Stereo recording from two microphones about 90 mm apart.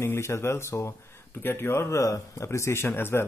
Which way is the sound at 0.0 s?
30° left (ahead or behind).